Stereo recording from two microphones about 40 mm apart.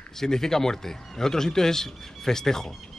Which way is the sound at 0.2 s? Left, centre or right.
Centre.